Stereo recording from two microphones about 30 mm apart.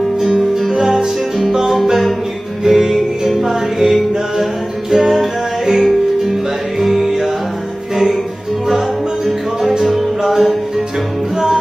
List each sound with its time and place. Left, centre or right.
0.4 s music: centre
2.6 s music: centre
4.9 s music: centre
6.8 s music: centre
8.6 s music: centre